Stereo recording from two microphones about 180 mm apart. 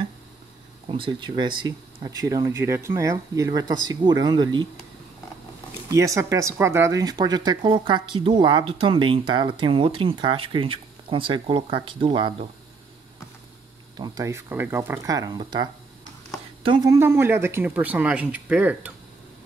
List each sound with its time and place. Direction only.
0.8 s speech: 30° right (ahead or behind)
5.9 s speech: 15° right (ahead or behind)
13.9 s speech: 20° right (ahead or behind)